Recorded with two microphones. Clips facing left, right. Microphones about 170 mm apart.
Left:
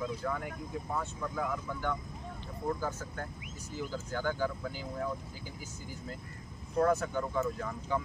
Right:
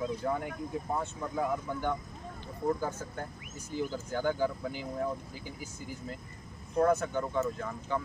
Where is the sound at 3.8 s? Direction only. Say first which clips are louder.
Right 3 dB; 20° right (ahead or behind).